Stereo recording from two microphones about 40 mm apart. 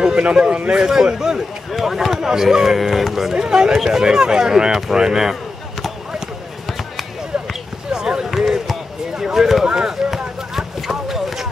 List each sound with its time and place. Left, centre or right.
0.0 s speech: right
1.7 s speech: centre
3.3 s speech: centre
4.9 s basketball bounce: centre
7.9 s run: centre
8.3 s basketball bounce: centre
9.2 s a sound: centre
10.1 s a sound: centre